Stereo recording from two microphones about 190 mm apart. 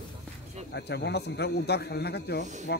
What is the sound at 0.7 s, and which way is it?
Speech, 60° left (ahead or behind).